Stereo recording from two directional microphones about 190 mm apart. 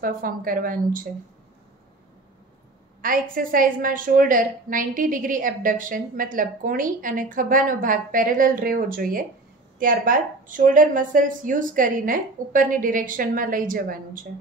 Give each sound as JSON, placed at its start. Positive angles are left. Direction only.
{"t": 0.0, "sound": "a woman's voice", "side_deg": -45}
{"t": 3.0, "sound": "a woman's voice", "side_deg": -50}